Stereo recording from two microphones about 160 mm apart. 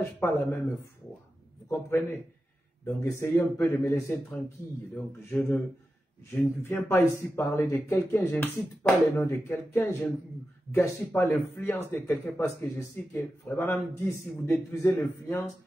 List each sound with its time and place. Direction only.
0.0 s speech: 10° left (ahead or behind)
1.7 s speech: 15° left (ahead or behind)
6.6 s speech: 15° left (ahead or behind)